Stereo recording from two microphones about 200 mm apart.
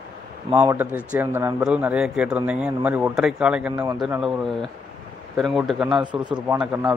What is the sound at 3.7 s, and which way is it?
Speech, 20° right (ahead or behind).